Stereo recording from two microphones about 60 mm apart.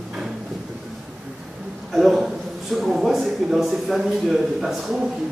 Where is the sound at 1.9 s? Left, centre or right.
Centre.